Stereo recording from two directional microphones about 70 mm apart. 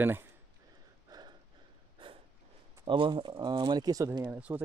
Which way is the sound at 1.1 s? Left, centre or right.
Right.